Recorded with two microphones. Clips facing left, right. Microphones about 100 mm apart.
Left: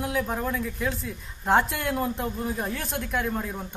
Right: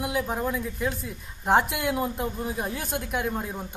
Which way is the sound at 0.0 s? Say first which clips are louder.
Even; 10° right (ahead or behind).